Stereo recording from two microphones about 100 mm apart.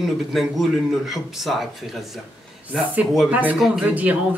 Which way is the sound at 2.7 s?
5° right (ahead or behind).